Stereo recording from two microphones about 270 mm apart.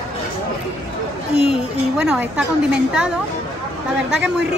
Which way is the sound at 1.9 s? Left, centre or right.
Centre.